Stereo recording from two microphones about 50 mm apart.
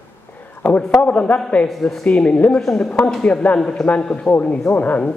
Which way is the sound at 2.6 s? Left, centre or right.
Centre.